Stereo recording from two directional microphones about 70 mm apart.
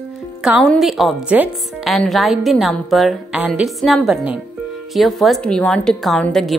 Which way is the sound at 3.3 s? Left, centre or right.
Centre.